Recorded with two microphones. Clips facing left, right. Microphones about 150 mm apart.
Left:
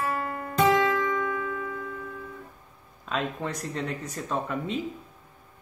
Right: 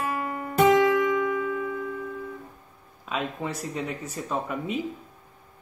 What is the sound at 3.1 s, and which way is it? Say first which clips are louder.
Speech: even; 5° right (ahead or behind).